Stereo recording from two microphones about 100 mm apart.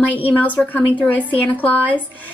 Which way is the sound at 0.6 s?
10° left (ahead or behind).